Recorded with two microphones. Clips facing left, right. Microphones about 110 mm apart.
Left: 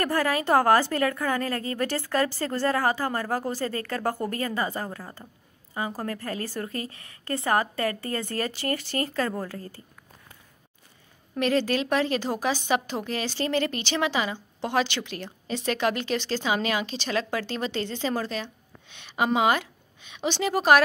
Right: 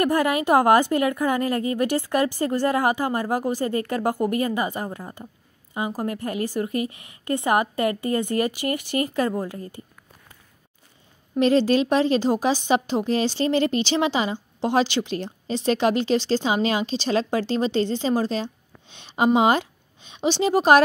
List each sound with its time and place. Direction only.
0.0 s a woman's voice: 15° right (ahead or behind)
11.3 s a woman's voice: 20° right (ahead or behind)